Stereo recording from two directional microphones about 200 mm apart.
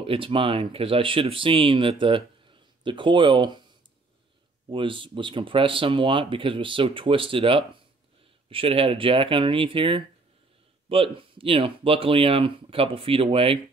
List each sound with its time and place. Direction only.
0.0 s speech: 25° right (ahead or behind)
4.6 s speech: 25° right (ahead or behind)